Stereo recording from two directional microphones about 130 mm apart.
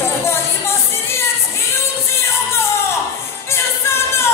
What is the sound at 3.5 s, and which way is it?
Music, 20° left (ahead or behind).